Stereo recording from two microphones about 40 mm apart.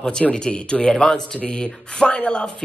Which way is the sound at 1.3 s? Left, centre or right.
Left.